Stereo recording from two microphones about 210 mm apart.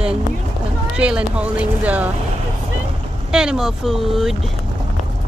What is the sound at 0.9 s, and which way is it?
Speech, 5° right (ahead or behind).